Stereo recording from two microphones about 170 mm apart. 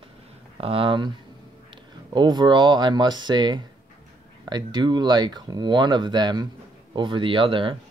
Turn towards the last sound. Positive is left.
turn(degrees=-30)  # may be behind; listen again after turning